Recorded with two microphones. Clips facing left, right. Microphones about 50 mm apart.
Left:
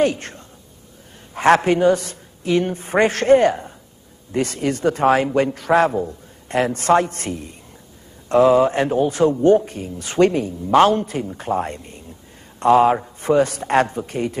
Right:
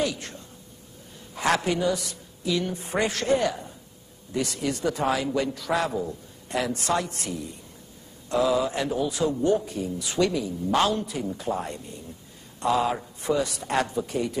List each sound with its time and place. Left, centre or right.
0.0 s a man's voice: left